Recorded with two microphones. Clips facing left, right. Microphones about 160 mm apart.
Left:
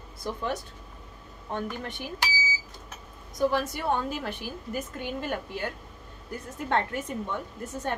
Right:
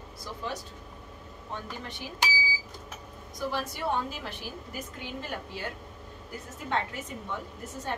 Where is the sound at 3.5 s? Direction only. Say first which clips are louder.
Left 3 dB; 55° left (ahead or behind).